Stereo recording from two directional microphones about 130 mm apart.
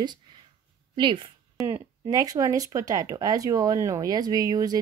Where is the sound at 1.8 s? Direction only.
30° right (ahead or behind).